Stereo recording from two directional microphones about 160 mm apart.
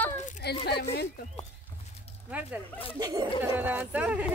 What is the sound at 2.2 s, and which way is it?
Speech, 10° right (ahead or behind).